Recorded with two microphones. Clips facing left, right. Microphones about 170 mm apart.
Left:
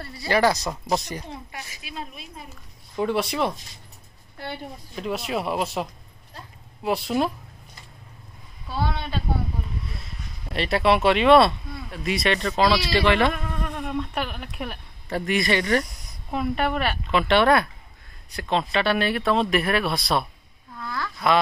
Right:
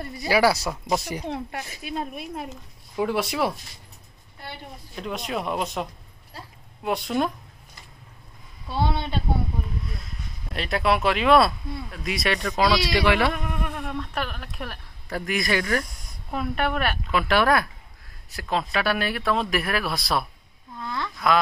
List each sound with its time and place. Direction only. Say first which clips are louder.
0.0 s a woman's voice: right 4 dB; 20° right (ahead or behind)
0.3 s speech: even; 5° right (ahead or behind)
1.2 s speech: right 7 dB; 60° right (ahead or behind)
3.0 s speech: even; centre (ahead or behind)
4.9 s speech: left 2 dB; 5° left (ahead or behind)
8.6 s a woman's voice: right 2 dB; 25° right (ahead or behind)
10.5 s speech: left 3 dB; centre (ahead or behind)
20.8 s a woman's voice: even; 20° right (ahead or behind)